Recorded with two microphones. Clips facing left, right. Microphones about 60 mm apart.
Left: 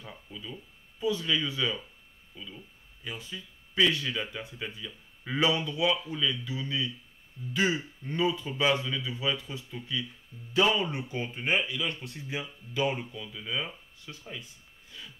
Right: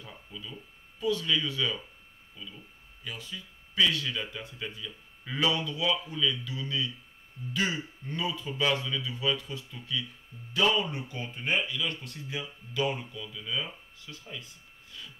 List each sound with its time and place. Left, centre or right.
0.0 s speech: centre